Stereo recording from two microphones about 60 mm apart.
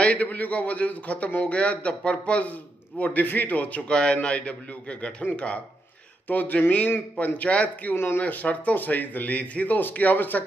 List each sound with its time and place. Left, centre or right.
0.0 s a man's voice: left
7.9 s speech: left
8.2 s a man's voice: left